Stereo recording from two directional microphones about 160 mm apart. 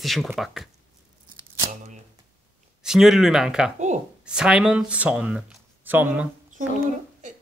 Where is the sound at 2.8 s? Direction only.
5° right (ahead or behind).